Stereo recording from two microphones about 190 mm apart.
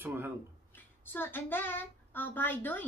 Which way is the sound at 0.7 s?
10° left (ahead or behind).